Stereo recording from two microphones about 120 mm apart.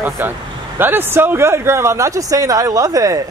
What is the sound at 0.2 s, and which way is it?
Speech, 15° right (ahead or behind).